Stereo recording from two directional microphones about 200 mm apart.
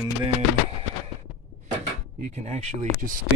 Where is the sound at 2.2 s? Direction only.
35° right (ahead or behind).